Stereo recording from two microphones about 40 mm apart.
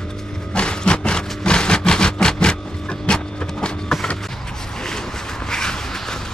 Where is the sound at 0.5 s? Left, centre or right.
Left.